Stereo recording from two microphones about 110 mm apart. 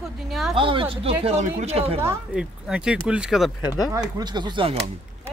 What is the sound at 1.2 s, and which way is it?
Speech, 80° right.